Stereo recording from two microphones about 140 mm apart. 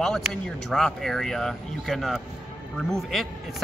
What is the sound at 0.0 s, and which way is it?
Speech, 5° left (ahead or behind).